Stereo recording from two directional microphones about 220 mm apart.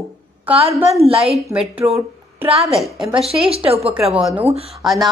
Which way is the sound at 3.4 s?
25° right (ahead or behind).